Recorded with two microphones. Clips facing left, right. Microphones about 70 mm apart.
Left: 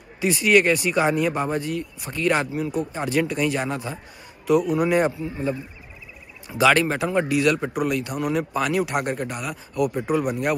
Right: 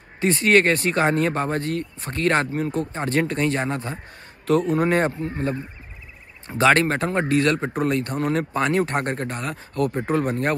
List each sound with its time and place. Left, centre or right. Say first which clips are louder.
0.2 s a man's voice: right 1 dB; right